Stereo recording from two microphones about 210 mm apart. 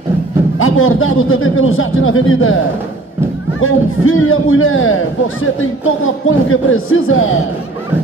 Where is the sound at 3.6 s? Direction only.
80° left.